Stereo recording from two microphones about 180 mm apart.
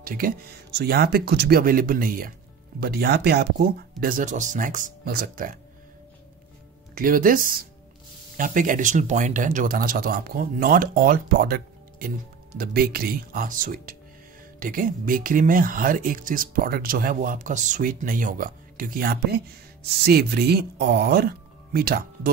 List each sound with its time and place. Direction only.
0.0 s speech: 55° right (ahead or behind)
7.0 s speech: 50° right (ahead or behind)